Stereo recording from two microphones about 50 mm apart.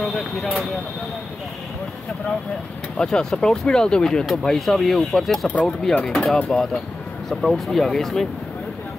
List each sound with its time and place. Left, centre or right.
0.0 s speech: centre
3.0 s speech: centre
5.5 s speech: left
6.0 s speech: centre
7.2 s speech: centre